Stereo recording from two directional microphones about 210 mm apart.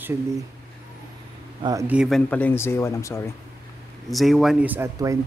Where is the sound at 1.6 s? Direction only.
10° right (ahead or behind).